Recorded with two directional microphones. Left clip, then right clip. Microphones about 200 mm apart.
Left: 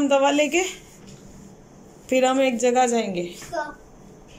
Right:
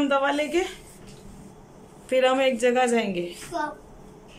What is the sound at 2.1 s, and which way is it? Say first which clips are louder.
A woman's voice: left 1 dB; 5° right (ahead or behind).